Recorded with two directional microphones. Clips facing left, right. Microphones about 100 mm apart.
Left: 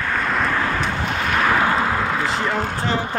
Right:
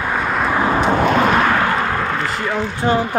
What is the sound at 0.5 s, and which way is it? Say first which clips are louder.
Vehicle: right 6 dB; 25° right (ahead or behind).